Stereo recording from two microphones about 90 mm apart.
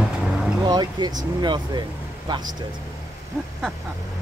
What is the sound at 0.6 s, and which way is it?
Vehicle, 50° right (ahead or behind).